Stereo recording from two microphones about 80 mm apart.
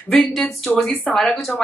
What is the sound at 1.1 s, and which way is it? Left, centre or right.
Speech, centre.